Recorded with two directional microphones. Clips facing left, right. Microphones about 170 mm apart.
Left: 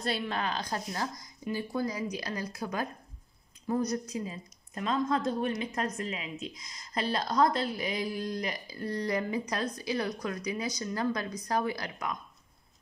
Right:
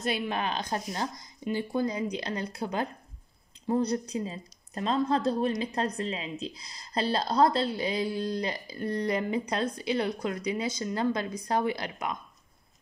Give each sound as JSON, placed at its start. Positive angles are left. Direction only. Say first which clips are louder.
{"t": 0.0, "sound": "a woman's voice", "louder": "right 2 dB", "side_deg": -20}